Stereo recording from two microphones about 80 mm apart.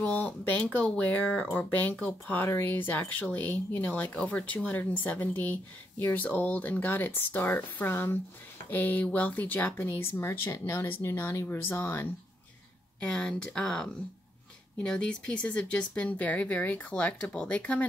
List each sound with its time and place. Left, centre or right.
0.0 s speech: centre
13.0 s speech: centre